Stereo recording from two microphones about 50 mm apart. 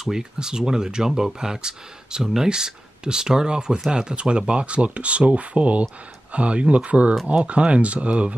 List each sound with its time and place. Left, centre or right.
0.0 s speech: centre